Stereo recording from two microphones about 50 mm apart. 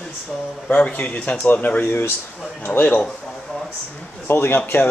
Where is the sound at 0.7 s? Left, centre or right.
Left.